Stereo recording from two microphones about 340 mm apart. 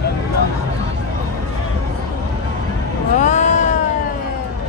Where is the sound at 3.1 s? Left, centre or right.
Left.